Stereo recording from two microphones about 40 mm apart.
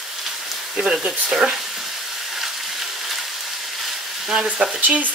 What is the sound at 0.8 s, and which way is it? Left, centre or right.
Speech, right.